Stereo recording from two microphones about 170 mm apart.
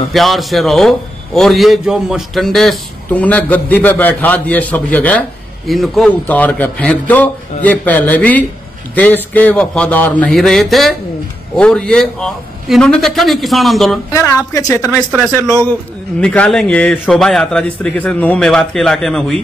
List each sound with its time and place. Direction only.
0.1 s a man's voice: centre (ahead or behind)
14.1 s a man's voice: 15° left (ahead or behind)
15.0 s a man's voice: 5° left (ahead or behind)